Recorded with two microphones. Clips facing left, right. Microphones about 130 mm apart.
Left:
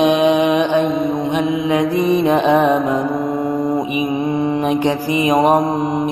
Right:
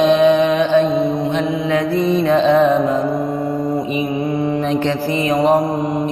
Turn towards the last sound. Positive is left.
turn(degrees=20)  # may be behind; listen again after turning